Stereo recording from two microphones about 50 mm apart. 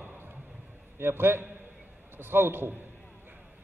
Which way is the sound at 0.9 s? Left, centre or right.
Right.